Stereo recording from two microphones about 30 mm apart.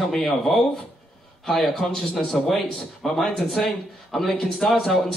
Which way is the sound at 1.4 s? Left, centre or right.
Centre.